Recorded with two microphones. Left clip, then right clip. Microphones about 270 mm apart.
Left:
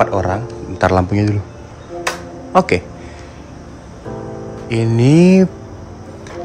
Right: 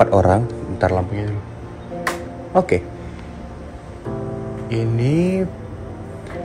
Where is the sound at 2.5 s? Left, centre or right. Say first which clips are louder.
Left 3 dB; centre.